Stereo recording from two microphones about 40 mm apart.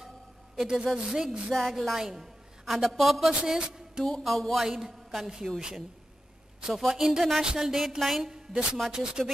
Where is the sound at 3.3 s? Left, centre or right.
Centre.